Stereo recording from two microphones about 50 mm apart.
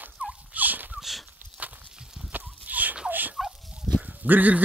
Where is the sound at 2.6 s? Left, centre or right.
Right.